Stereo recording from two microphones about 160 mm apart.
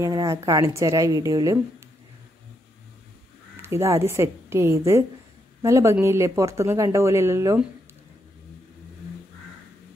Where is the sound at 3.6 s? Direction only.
15° right (ahead or behind).